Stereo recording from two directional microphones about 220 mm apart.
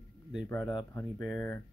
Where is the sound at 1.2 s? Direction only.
Centre (ahead or behind).